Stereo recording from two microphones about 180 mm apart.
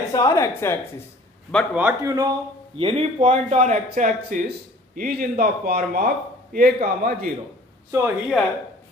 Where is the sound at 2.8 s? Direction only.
30° right (ahead or behind); by 7.3 s 50° right (ahead or behind).